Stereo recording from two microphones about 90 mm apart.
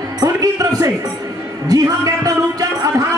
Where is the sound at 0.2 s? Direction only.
40° right (ahead or behind).